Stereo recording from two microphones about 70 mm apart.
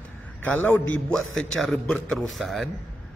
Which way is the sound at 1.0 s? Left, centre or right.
Centre.